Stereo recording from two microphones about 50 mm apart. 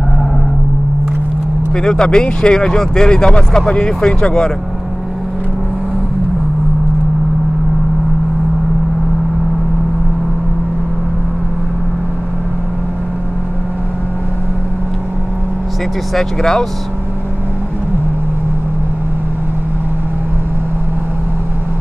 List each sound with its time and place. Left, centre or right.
1.8 s speech: centre
16.2 s speech: centre